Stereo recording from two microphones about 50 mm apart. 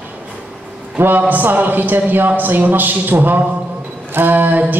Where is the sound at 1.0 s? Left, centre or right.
Right.